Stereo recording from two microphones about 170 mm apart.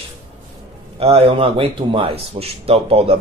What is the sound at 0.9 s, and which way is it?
A man's voice, 35° right (ahead or behind).